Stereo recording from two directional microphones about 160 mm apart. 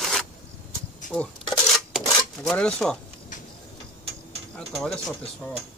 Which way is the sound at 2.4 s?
5° left (ahead or behind).